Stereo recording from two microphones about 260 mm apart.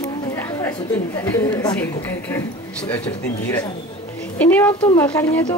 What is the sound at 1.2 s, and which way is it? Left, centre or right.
Speech, centre.